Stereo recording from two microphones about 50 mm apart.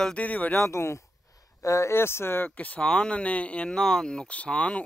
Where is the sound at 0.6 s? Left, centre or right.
Left.